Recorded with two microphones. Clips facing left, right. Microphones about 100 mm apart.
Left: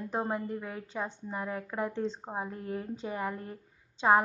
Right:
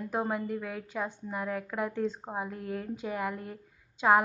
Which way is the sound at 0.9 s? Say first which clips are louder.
Right 1 dB; 15° left (ahead or behind).